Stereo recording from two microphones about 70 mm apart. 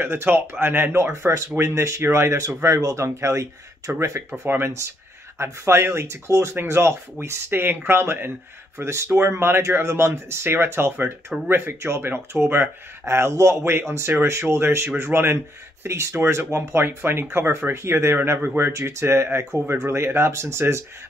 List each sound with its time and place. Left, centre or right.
0.0 s speech: right
4.3 s speech: right
6.5 s speech: right
6.8 s speech: right